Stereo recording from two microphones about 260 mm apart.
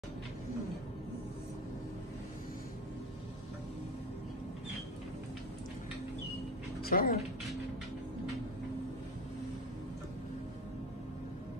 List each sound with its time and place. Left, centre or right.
6.8 s speech: left